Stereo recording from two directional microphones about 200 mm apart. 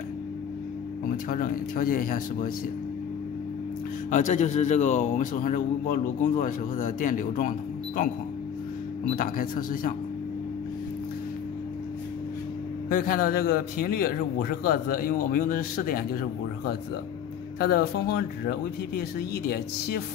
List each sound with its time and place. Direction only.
1.0 s speech: 45° left (ahead or behind)
4.1 s a man's voice: 35° left (ahead or behind)
9.1 s speech: 45° left (ahead or behind)
12.9 s speech: 45° left (ahead or behind)
17.6 s speech: 50° left (ahead or behind)